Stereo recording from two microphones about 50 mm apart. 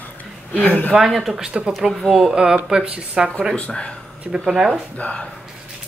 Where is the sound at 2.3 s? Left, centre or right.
Centre.